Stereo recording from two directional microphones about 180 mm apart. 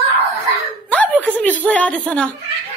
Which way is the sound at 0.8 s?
10° left (ahead or behind).